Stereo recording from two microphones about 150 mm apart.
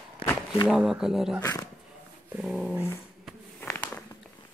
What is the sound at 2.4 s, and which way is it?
Speech, centre (ahead or behind).